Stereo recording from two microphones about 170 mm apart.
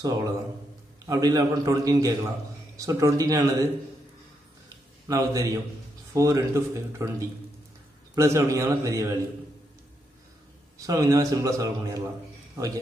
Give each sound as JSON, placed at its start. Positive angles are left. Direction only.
{"t": 0.0, "sound": "a man's voice", "side_deg": -20}
{"t": 5.0, "sound": "a man's voice", "side_deg": -20}
{"t": 10.9, "sound": "a man's voice", "side_deg": -20}